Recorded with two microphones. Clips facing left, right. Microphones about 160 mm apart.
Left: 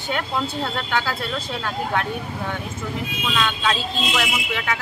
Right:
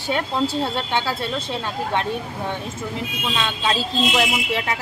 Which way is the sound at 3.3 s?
30° right (ahead or behind).